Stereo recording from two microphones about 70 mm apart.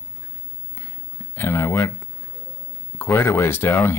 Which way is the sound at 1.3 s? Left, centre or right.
Left.